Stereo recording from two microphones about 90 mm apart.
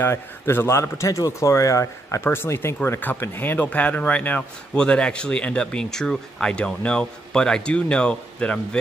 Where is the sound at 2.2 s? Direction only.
25° left (ahead or behind).